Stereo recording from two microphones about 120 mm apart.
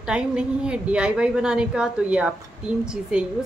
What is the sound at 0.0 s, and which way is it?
A woman's voice, 5° right (ahead or behind).